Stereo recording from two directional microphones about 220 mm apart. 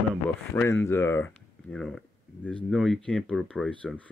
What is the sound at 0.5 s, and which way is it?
Speech, 10° left (ahead or behind).